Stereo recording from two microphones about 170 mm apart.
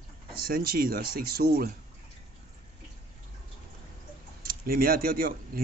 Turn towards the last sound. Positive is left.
turn(degrees=-60)  # may be behind; listen again after turning